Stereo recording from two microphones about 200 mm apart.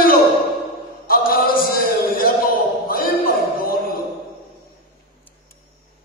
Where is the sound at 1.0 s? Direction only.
45° left (ahead or behind).